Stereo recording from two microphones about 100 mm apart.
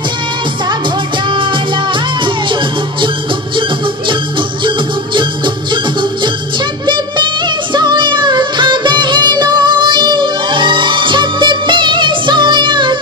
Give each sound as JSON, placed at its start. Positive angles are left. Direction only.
{"t": 1.3, "sound": "music", "side_deg": -55}
{"t": 4.6, "sound": "music", "side_deg": -55}